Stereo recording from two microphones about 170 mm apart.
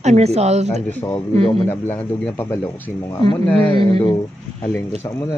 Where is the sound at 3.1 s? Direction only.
25° left (ahead or behind).